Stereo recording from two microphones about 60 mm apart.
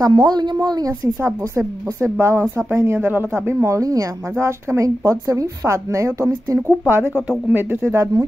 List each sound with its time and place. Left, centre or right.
0.0 s a woman's voice: right
1.2 s speech: right
3.1 s speech: right
3.7 s a woman's voice: right
4.4 s speech: right
5.6 s speech: right
6.9 s speech: right
7.8 s speech: right